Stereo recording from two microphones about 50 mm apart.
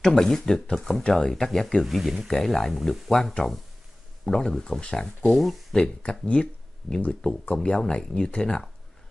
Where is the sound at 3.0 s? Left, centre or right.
Centre.